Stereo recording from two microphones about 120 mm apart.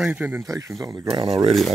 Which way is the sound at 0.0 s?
10° right (ahead or behind).